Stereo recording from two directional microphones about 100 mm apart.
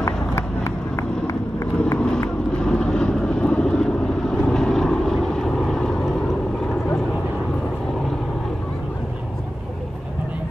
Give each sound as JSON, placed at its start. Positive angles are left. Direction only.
{"t": 0.0, "sound": "run", "side_deg": 30}
{"t": 2.0, "sound": "vehicle", "side_deg": 10}